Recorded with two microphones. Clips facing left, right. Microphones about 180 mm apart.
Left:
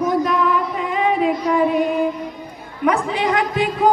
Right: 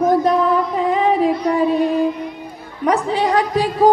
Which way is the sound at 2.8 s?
35° right (ahead or behind).